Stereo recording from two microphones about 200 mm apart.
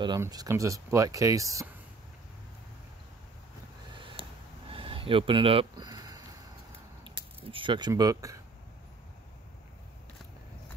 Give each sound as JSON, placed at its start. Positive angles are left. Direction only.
{"t": 0.0, "sound": "speech", "side_deg": -20}
{"t": 4.0, "sound": "a sound", "side_deg": -25}
{"t": 7.5, "sound": "speech", "side_deg": -25}